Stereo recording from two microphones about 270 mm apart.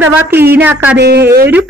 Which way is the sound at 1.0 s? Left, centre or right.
Right.